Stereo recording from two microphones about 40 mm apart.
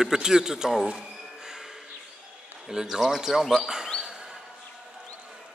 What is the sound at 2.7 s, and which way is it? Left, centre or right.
Speech, centre.